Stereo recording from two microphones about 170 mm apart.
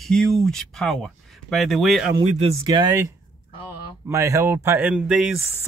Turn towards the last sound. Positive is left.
turn(degrees=-5)  # may be behind; listen again after turning